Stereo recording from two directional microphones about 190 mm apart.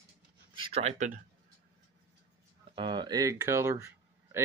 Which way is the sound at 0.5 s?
30° right (ahead or behind).